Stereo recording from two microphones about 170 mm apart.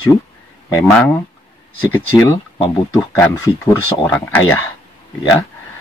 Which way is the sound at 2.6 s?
25° left (ahead or behind).